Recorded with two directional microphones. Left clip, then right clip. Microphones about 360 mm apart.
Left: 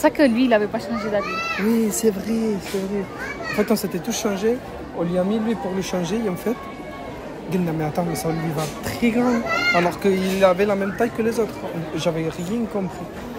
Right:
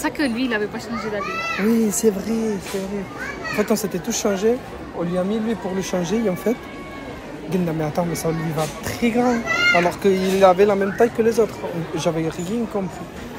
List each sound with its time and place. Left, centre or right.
0.0 s a child's voice: centre
1.7 s speech: centre
3.5 s speech: centre
7.5 s speech: centre